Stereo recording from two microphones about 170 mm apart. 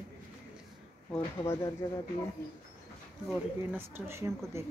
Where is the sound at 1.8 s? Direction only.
15° left (ahead or behind).